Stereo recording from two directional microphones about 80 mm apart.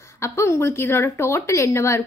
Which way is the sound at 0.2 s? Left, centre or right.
Left.